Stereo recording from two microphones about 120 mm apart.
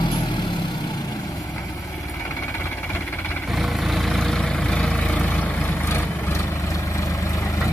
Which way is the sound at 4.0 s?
Centre (ahead or behind).